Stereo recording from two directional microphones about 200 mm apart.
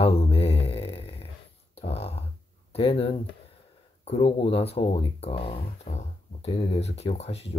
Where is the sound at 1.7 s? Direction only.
30° left (ahead or behind).